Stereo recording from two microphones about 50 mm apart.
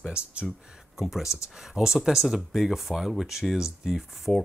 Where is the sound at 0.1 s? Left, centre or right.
Right.